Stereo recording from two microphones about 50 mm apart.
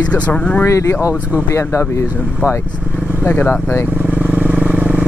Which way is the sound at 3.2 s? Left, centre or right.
Left.